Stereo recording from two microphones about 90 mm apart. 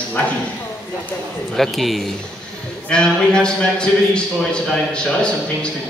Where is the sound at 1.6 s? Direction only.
Centre (ahead or behind).